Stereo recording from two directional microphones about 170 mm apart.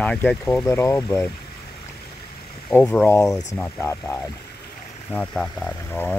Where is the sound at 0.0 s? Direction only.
5° left (ahead or behind).